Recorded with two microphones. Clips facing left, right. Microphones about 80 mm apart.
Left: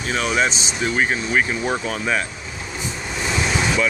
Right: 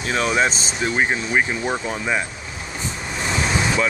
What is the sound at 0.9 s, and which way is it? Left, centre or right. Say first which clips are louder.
Speech: even; right.